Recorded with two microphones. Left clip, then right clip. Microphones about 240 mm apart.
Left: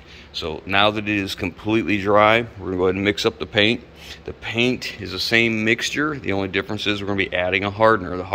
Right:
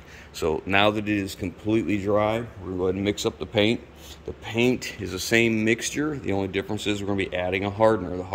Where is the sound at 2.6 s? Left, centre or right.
Left.